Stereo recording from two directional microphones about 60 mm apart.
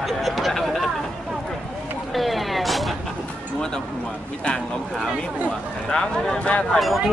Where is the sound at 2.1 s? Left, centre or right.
Centre.